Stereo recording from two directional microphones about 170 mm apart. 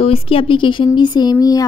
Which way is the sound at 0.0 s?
35° left (ahead or behind).